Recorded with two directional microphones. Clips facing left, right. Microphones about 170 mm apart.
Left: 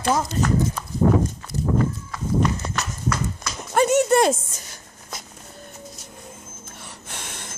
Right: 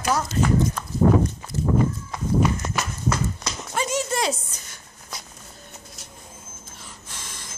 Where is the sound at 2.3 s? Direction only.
5° right (ahead or behind).